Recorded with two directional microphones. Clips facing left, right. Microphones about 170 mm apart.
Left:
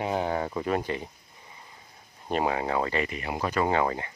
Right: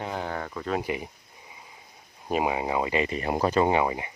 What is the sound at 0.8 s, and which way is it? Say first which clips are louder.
Speech: right 1 dB; 15° right (ahead or behind).